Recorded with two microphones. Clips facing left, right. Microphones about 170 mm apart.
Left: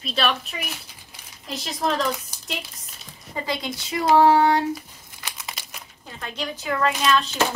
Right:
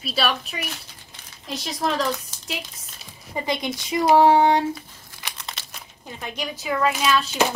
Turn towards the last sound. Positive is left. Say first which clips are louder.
# even
turn(degrees=-5)  # may be behind; listen again after turning